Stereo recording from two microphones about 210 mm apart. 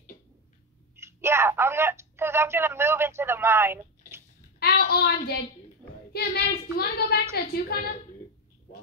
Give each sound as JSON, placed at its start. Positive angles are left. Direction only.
{"t": 0.9, "sound": "speech", "side_deg": -10}
{"t": 4.6, "sound": "a sound", "side_deg": 50}
{"t": 6.1, "sound": "a woman's voice", "side_deg": 50}